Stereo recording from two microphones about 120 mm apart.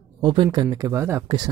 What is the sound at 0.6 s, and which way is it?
Speech, 25° right (ahead or behind).